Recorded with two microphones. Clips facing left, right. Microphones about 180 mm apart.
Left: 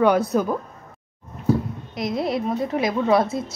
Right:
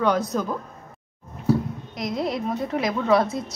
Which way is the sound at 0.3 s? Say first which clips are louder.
Left 5 dB; 10° left (ahead or behind).